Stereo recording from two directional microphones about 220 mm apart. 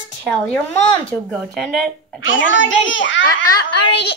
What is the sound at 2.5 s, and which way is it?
Speech, 60° left (ahead or behind).